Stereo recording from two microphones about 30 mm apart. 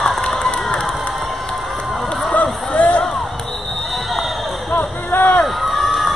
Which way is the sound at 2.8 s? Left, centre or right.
Left.